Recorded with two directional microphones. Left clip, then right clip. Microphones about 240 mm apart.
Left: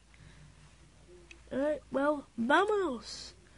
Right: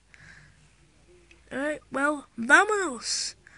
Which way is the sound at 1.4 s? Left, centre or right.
Right.